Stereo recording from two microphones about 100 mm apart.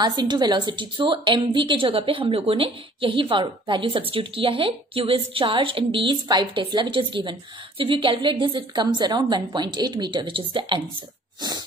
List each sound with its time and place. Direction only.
0.0 s a woman's voice: 45° right (ahead or behind)